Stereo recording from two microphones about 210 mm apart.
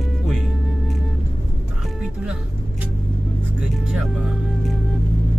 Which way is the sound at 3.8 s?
Centre (ahead or behind).